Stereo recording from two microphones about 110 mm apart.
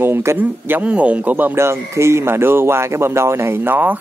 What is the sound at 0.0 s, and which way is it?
Speech, 20° right (ahead or behind).